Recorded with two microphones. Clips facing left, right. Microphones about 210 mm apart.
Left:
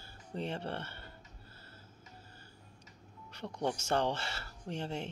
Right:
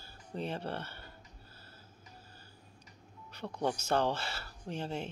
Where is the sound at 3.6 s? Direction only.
20° left (ahead or behind).